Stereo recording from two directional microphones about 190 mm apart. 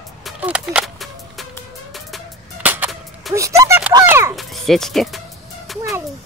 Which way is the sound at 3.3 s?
15° right (ahead or behind).